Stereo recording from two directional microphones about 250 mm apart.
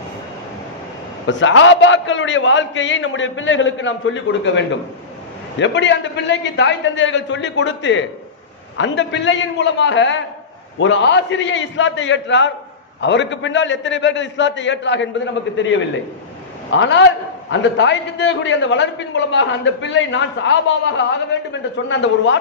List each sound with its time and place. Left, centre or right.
1.2 s a man's voice: left